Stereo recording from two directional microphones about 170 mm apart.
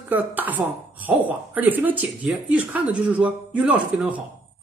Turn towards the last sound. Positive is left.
turn(degrees=-5)  # may be behind; listen again after turning